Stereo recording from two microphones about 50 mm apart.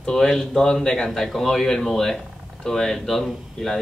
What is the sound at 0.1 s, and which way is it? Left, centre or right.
Speech, centre.